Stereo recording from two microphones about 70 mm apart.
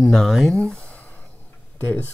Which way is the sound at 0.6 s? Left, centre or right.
Centre.